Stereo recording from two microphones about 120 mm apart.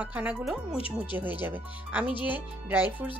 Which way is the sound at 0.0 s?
10° right (ahead or behind).